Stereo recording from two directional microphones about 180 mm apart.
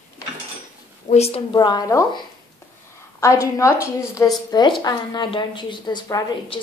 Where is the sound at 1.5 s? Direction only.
20° left (ahead or behind).